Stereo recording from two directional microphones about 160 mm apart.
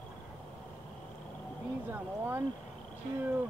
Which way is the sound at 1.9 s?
15° right (ahead or behind).